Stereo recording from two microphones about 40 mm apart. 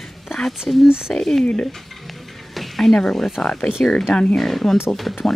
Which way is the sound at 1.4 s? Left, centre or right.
Left.